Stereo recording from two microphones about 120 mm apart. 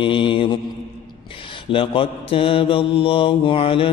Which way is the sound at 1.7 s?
45° left (ahead or behind).